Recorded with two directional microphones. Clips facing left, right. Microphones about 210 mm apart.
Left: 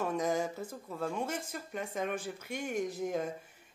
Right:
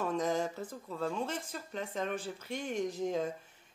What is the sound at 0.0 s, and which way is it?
Speech, 10° left (ahead or behind).